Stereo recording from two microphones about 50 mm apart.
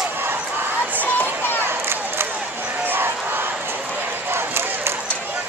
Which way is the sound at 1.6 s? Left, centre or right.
Right.